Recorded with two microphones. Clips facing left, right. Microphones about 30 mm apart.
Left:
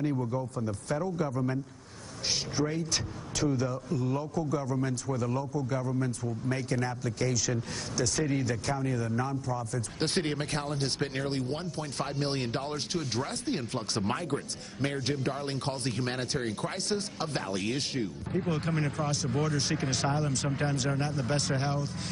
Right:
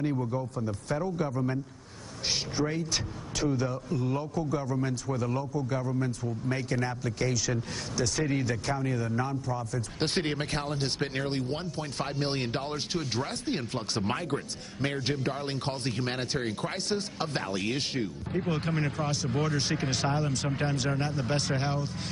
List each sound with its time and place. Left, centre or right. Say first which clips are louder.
0.0 s speech: even; centre
1.3 s speech: right 1 dB; centre